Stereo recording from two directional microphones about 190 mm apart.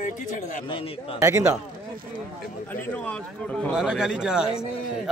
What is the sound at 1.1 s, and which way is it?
Speech, 15° right (ahead or behind).